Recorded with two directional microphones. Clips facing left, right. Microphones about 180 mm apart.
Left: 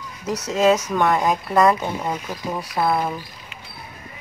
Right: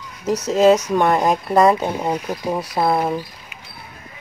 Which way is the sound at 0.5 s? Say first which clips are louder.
Right 4 dB; 30° right (ahead or behind).